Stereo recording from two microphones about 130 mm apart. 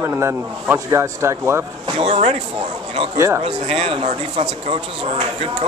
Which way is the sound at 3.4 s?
50° right (ahead or behind).